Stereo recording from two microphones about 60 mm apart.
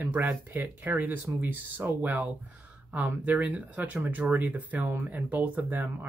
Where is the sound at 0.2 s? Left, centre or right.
Right.